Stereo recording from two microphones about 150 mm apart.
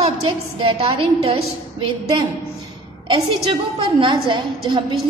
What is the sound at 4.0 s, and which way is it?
Speech, 30° right (ahead or behind).